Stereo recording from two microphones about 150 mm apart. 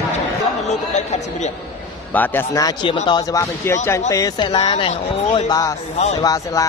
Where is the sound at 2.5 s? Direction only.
25° left (ahead or behind).